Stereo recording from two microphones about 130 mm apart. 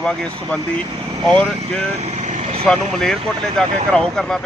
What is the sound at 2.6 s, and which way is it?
Speech, 5° left (ahead or behind).